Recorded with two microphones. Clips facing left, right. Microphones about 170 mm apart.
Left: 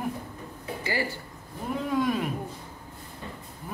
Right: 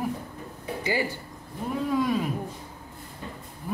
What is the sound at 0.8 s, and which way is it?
Speech, 15° right (ahead or behind).